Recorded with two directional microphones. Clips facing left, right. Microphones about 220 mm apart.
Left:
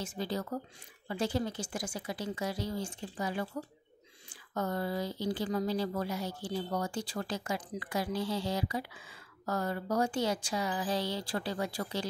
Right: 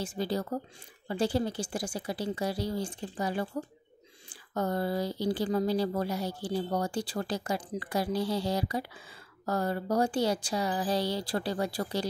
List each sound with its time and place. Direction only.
0.0 s speech: 35° right (ahead or behind)